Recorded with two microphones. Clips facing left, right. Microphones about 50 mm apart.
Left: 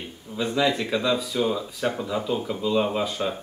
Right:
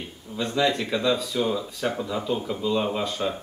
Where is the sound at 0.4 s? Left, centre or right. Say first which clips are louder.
Left 1 dB; centre.